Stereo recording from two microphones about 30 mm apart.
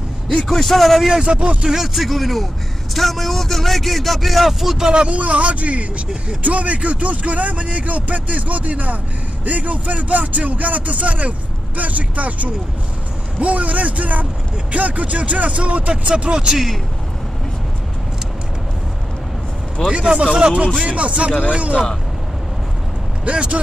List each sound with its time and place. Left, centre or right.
0.4 s speech: centre
1.0 s a man's voice: centre
1.8 s speech: centre
5.1 s a man's voice: right
19.9 s a man's voice: right
23.2 s a man's voice: right